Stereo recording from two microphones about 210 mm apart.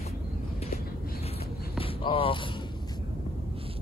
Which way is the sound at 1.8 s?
25° left (ahead or behind).